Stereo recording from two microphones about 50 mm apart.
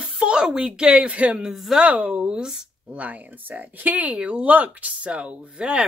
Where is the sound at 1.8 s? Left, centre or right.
Right.